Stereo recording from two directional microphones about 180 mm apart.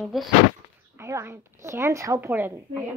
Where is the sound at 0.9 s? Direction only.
15° right (ahead or behind).